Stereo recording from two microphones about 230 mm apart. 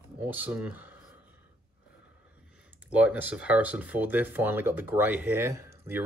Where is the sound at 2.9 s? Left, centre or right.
Centre.